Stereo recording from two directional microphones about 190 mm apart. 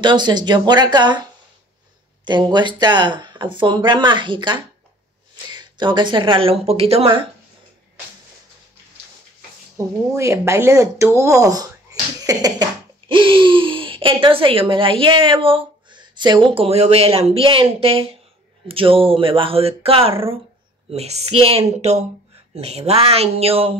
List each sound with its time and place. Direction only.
0.0 s speech: 25° right (ahead or behind)
9.8 s speech: 15° right (ahead or behind); by 23.7 s 30° right (ahead or behind)